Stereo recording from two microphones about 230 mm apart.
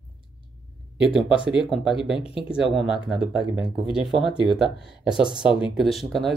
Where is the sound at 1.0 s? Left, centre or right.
Centre.